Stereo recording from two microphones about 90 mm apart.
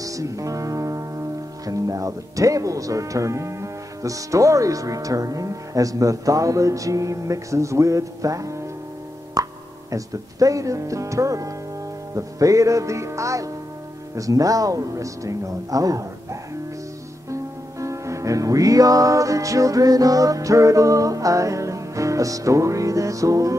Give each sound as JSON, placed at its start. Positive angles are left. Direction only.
{"t": 0.0, "sound": "music", "side_deg": -40}
{"t": 1.7, "sound": "speech", "side_deg": -40}
{"t": 17.3, "sound": "music", "side_deg": -35}